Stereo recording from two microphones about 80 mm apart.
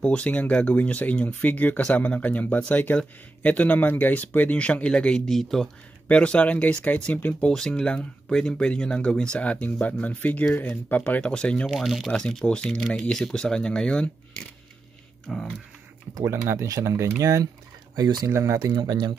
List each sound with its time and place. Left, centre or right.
0.0 s speech: centre
6.0 s speech: centre
11.6 s speech: centre
16.3 s speech: right
18.3 s speech: right
18.6 s speech: right